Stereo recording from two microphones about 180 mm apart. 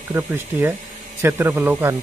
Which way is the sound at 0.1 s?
10° right (ahead or behind).